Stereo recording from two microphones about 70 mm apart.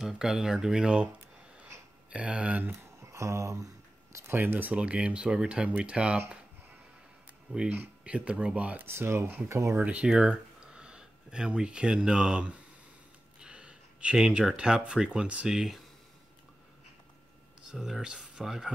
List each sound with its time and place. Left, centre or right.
0.1 s speech: centre
3.0 s a sound: right
4.1 s speech: right; by 6.3 s centre
7.6 s speech: centre
8.8 s speech: right
9.8 s speech: centre
17.6 s speech: centre